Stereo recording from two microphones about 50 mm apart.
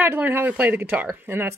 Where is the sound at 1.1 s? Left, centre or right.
Right.